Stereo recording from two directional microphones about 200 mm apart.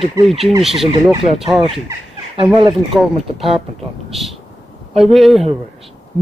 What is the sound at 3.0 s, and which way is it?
Speech, centre (ahead or behind).